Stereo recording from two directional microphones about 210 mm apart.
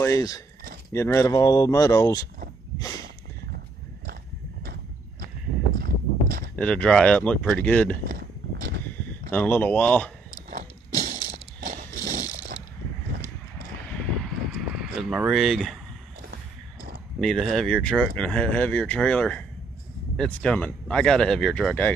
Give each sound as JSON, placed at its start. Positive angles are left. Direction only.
{"t": 0.0, "sound": "speech", "side_deg": 15}
{"t": 3.5, "sound": "horse", "side_deg": -45}
{"t": 5.8, "sound": "a sound", "side_deg": -45}
{"t": 6.5, "sound": "speech", "side_deg": 5}
{"t": 8.1, "sound": "a sound", "side_deg": -45}
{"t": 9.3, "sound": "speech", "side_deg": 10}
{"t": 10.5, "sound": "a sound", "side_deg": -40}
{"t": 14.8, "sound": "speech", "side_deg": -5}
{"t": 17.2, "sound": "speech", "side_deg": 0}